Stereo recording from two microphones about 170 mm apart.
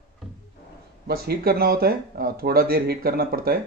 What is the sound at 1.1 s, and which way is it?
Speech, 65° right (ahead or behind).